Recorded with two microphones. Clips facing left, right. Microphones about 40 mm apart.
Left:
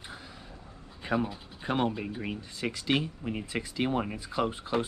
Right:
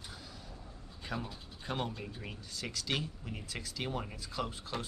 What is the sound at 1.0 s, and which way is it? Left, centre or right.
Speech, left.